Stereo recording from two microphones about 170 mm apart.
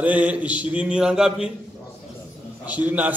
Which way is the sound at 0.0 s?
10° right (ahead or behind).